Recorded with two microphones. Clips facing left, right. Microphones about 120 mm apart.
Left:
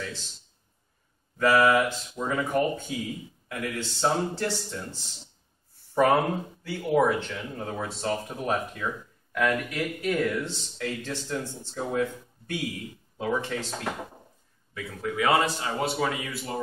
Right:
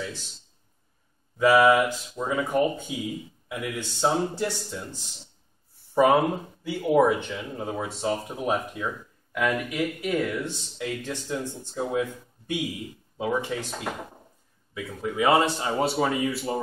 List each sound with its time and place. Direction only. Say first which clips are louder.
1.4 s speech: right 3 dB; 15° right (ahead or behind)
6.6 s a man's voice: right 3 dB; 15° right (ahead or behind)